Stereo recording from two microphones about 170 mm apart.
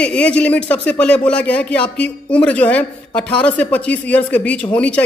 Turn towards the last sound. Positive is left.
turn(degrees=5)  # may be behind; listen again after turning